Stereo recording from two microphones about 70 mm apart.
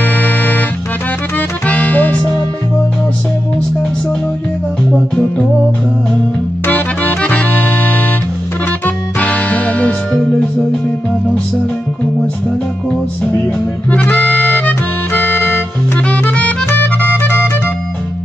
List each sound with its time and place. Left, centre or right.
0.0 s music: left
1.7 s music: left
6.6 s music: left
8.8 s music: left
13.8 s accordion: left
16.3 s music: centre